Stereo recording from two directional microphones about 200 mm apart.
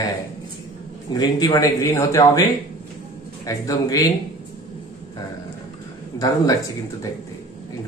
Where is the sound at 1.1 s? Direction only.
20° left (ahead or behind).